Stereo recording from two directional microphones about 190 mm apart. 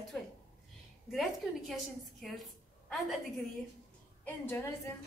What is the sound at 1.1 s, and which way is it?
Speech, centre (ahead or behind).